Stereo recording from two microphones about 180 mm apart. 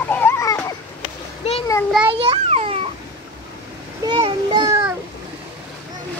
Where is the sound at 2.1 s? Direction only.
35° right (ahead or behind).